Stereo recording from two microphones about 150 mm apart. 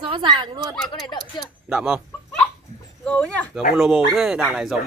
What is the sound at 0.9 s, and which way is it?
Speech, 25° left (ahead or behind).